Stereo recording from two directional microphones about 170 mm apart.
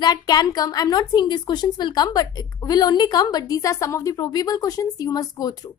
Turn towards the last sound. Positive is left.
turn(degrees=20)  # may be behind; listen again after turning